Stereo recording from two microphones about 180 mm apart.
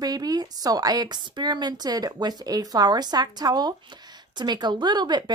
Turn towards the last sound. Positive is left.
turn(degrees=-25)  # may be behind; listen again after turning